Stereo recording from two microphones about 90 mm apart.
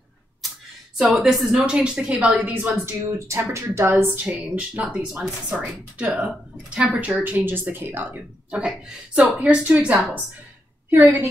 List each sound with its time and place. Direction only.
0.9 s speech: 10° right (ahead or behind)
2.7 s speech: 30° right (ahead or behind)
4.6 s speech: 10° right (ahead or behind)
10.9 s speech: 25° right (ahead or behind)